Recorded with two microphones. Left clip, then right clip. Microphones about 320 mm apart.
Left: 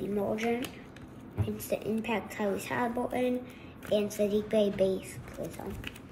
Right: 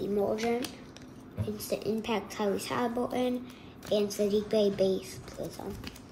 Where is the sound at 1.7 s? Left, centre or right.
Right.